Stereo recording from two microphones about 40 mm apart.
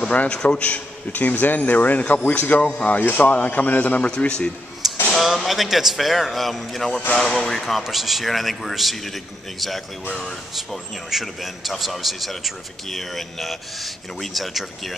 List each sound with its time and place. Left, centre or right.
0.1 s speech: left
4.8 s a sound: centre
5.2 s a man's voice: centre
7.8 s a man's voice: centre